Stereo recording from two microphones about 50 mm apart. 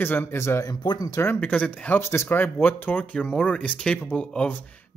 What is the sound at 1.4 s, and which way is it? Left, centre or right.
Speech, left.